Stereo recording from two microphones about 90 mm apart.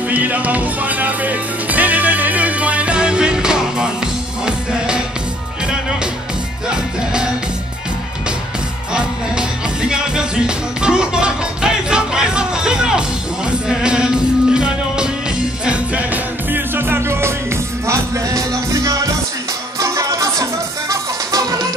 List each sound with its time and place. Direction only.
0.1 s music: 15° right (ahead or behind)
6.7 s music: 10° right (ahead or behind)
8.9 s music: 10° right (ahead or behind); by 21.5 s 45° right (ahead or behind)